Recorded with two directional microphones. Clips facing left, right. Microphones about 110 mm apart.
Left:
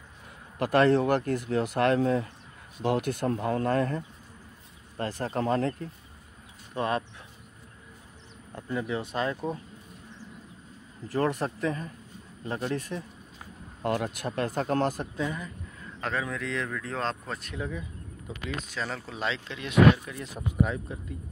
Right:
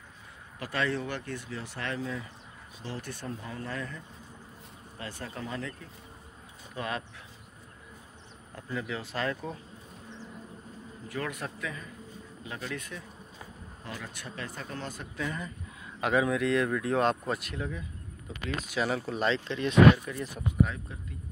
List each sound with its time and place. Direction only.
0.6 s speech: 50° left (ahead or behind)
6.7 s speech: 30° left (ahead or behind)
8.5 s speech: 25° left (ahead or behind)
11.1 s speech: 35° left (ahead or behind)
13.8 s speech: 50° left (ahead or behind)
15.8 s speech: 10° right (ahead or behind); by 20.2 s 5° left (ahead or behind)